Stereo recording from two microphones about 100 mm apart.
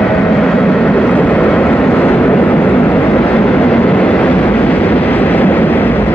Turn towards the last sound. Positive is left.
turn(degrees=20)  # may be behind; listen again after turning